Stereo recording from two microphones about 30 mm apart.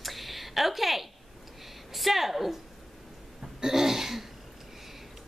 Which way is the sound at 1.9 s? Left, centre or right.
Centre.